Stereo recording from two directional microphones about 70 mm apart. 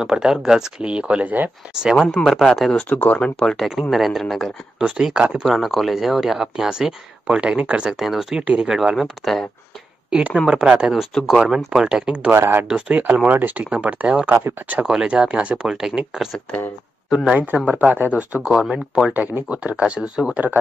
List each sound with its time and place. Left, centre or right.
0.0 s speech: centre
1.8 s speech: centre
2.2 s speech: centre
2.7 s speech: centre
4.7 s speech: centre
5.5 s speech: centre
7.9 s speech: centre
10.1 s speech: centre
12.3 s speech: right
12.6 s speech: centre
18.5 s speech: centre
19.5 s speech: centre